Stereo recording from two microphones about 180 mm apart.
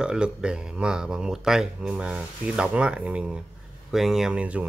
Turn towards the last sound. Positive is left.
turn(degrees=-5)  # may be behind; listen again after turning